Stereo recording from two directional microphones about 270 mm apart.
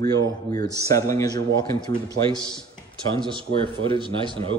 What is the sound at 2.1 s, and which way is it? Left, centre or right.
A man's voice, centre.